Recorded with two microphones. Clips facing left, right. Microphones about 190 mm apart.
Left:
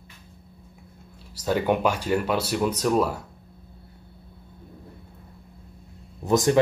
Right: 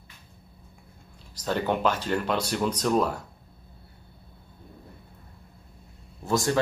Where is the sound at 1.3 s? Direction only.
10° left (ahead or behind).